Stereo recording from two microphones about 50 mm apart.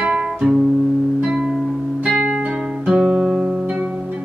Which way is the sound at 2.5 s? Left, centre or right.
Centre.